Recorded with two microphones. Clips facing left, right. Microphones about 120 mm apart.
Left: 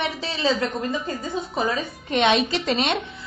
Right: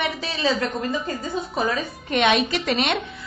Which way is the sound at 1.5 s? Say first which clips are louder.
Even; 20° left (ahead or behind).